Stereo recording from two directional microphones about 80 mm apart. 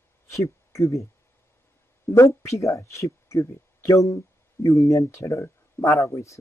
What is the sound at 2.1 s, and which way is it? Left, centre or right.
Speech, left.